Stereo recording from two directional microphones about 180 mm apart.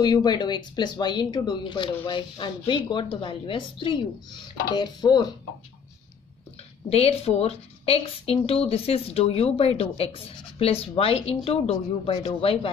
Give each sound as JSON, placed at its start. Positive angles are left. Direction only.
{"t": 0.0, "sound": "speech", "side_deg": 25}
{"t": 6.9, "sound": "a woman's voice", "side_deg": 35}